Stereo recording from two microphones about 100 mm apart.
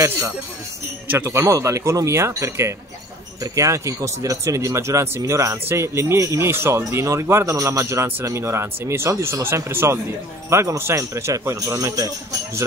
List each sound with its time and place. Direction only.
1.1 s speech: 25° right (ahead or behind)